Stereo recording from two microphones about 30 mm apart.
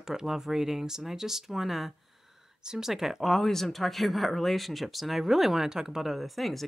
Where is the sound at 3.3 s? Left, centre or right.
Centre.